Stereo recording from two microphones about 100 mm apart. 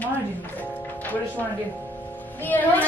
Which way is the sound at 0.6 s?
15° left (ahead or behind).